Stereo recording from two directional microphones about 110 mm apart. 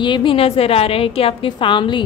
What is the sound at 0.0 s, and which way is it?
A woman's voice, 45° left (ahead or behind).